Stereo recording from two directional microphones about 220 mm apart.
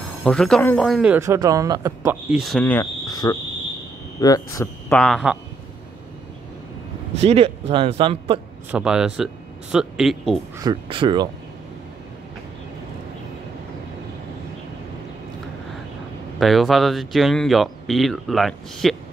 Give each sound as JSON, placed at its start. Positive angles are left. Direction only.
{"t": 0.2, "sound": "a man's voice", "side_deg": 5}
{"t": 2.3, "sound": "speech", "side_deg": 0}
{"t": 2.6, "sound": "cricket", "side_deg": 10}
{"t": 4.2, "sound": "a man's voice", "side_deg": 15}
{"t": 7.2, "sound": "speech", "side_deg": -25}
{"t": 8.7, "sound": "speech", "side_deg": -5}
{"t": 10.6, "sound": "speech", "side_deg": -20}
{"t": 16.3, "sound": "speech", "side_deg": 0}